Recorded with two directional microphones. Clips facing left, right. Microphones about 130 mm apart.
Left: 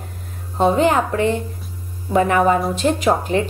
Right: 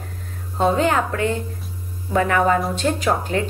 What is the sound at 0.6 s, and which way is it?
A woman's voice, 20° left (ahead or behind).